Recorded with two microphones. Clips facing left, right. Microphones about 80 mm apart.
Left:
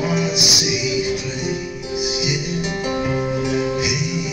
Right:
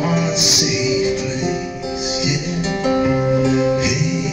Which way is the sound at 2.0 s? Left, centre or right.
Right.